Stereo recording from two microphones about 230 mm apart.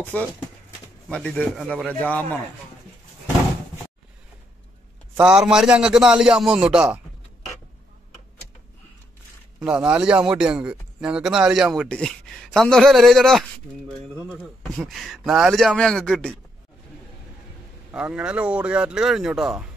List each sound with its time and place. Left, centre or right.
0.0 s a man's voice: centre
5.1 s a man's voice: centre
9.6 s a man's voice: centre
17.9 s a man's voice: centre